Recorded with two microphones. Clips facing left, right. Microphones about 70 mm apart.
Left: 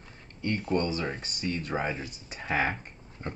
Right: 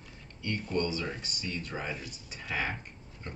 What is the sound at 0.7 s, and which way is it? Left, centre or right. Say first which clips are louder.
Speech: left 3 dB; left.